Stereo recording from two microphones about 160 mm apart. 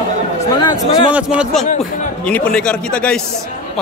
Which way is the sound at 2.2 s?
10° left (ahead or behind).